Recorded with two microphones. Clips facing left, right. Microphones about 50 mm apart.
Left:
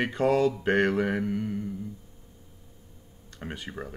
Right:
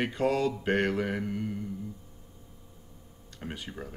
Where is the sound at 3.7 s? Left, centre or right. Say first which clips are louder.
Left 3 dB; left.